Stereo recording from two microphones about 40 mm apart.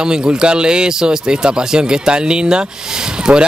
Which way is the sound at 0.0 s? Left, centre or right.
Centre.